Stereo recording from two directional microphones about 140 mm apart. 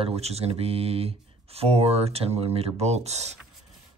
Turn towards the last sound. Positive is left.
turn(degrees=-50)  # may be behind; listen again after turning